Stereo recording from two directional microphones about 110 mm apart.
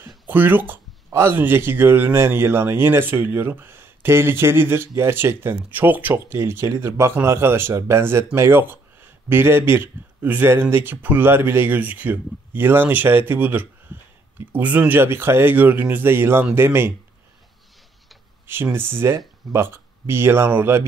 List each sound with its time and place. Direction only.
0.3 s speech: 15° right (ahead or behind)
18.5 s speech: 20° right (ahead or behind)